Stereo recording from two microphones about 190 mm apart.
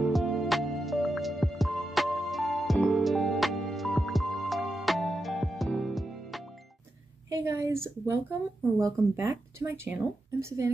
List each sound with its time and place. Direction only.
0.0 s music: centre (ahead or behind)
7.2 s a woman's voice: 15° right (ahead or behind)